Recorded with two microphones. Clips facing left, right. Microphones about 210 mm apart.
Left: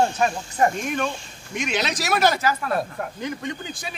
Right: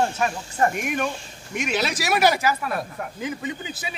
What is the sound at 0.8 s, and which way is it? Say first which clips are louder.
Speech: even; 15° right (ahead or behind).